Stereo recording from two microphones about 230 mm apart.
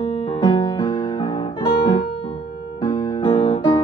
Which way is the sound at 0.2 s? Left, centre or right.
Left.